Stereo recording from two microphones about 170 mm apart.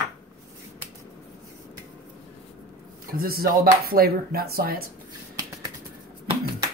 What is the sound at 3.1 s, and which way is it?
Speech, 60° right (ahead or behind).